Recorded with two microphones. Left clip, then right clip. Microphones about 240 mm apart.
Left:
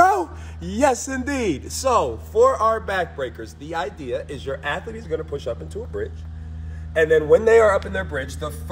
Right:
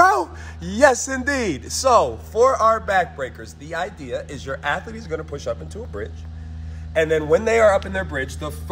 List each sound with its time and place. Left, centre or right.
0.0 s a sound: centre
1.1 s a man's voice: centre
6.9 s a man's voice: centre
7.9 s speech: right